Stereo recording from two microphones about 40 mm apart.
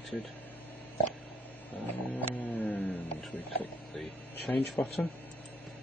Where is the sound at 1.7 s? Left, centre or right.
Left.